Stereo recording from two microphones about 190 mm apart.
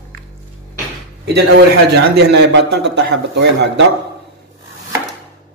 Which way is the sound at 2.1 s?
60° right (ahead or behind).